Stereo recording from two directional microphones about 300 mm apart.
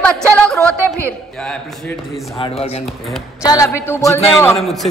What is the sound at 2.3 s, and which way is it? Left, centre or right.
A woman's voice, centre.